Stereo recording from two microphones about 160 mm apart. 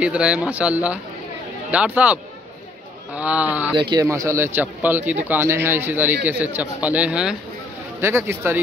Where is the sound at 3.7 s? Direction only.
30° right (ahead or behind).